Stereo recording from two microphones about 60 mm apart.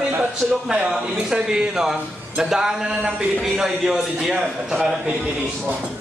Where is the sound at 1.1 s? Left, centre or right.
Centre.